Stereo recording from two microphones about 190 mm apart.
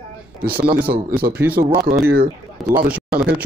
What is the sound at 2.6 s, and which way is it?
Speech, centre (ahead or behind).